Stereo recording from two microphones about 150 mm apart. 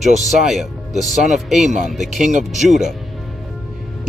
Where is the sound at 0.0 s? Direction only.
55° right (ahead or behind).